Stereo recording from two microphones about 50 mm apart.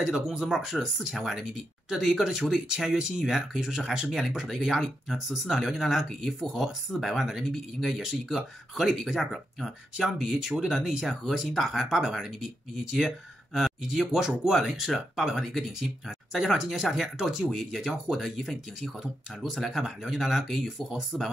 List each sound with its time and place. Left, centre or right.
0.0 s speech: centre
15.4 s speech: centre
18.4 s speech: centre